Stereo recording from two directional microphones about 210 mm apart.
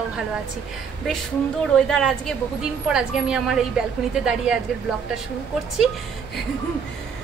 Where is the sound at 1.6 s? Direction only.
Centre (ahead or behind).